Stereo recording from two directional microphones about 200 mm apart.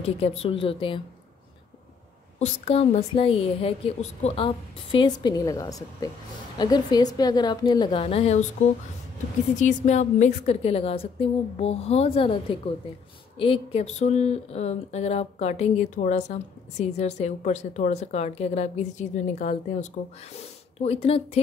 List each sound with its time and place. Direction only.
0.4 s a woman's voice: 30° left (ahead or behind)
2.3 s a woman's voice: 30° left (ahead or behind)
9.6 s a woman's voice: 35° left (ahead or behind)